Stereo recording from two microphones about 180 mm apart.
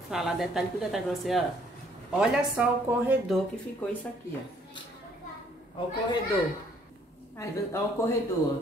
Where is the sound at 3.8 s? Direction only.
10° left (ahead or behind).